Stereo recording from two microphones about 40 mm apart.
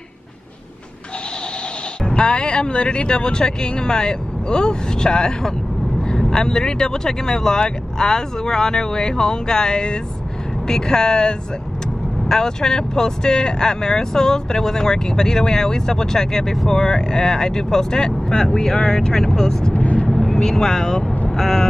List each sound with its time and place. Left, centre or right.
2.0 s speech: left
19.7 s vehicle: left
20.1 s vehicle: centre
21.4 s speech: centre